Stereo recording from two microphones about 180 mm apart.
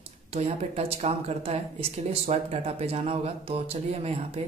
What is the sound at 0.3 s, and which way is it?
Speech, 35° right (ahead or behind).